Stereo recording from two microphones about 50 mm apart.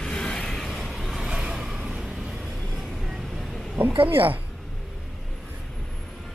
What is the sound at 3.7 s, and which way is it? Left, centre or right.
Speech, right.